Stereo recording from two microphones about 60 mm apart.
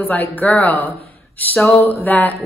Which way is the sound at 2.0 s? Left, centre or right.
Left.